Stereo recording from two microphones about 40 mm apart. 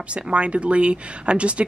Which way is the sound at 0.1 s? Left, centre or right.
Right.